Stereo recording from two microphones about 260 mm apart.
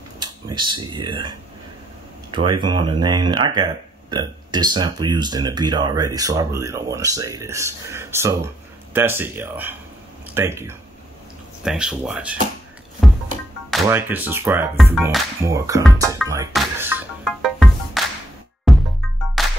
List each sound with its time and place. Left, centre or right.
0.2 s speech: centre
2.3 s speech: centre
13.8 s speech: centre
15.4 s speech: centre
16.5 s music: centre